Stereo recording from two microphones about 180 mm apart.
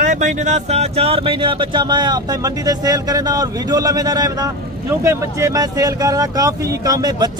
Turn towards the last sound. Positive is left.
turn(degrees=-20)  # may be behind; listen again after turning